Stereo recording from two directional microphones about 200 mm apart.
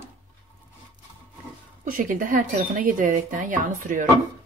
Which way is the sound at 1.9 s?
45° right (ahead or behind).